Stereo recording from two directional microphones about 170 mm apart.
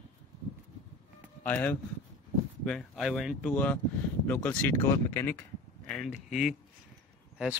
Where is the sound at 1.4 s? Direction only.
10° left (ahead or behind).